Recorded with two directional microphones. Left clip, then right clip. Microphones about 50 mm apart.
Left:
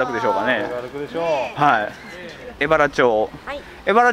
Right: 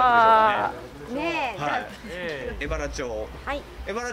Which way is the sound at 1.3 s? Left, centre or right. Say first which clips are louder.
Left 10 dB; left.